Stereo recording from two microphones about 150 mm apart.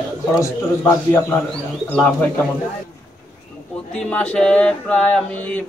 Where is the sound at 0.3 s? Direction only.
20° left (ahead or behind).